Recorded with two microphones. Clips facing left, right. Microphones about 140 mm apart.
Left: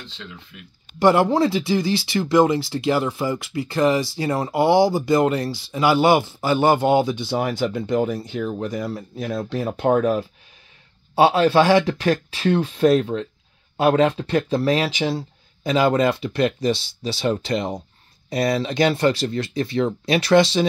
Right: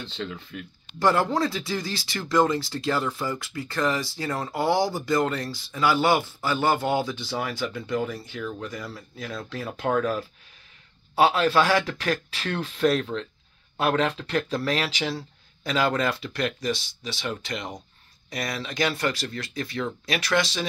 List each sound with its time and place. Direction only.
1.0 s speech: 25° left (ahead or behind)
8.4 s speech: 30° left (ahead or behind)